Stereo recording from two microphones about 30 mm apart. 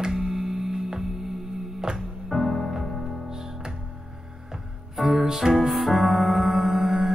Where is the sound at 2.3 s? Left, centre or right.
Centre.